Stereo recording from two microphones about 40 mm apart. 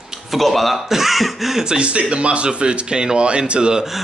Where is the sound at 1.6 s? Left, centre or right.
Right.